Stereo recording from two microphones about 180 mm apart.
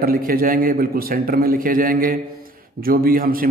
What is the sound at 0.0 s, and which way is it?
A man's voice, 55° right (ahead or behind).